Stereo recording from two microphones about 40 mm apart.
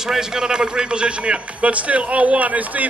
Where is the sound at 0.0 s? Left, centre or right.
Centre.